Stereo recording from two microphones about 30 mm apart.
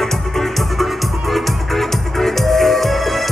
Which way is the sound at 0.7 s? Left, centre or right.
Centre.